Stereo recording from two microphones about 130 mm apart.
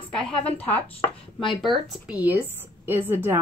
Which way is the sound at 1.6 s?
Centre (ahead or behind).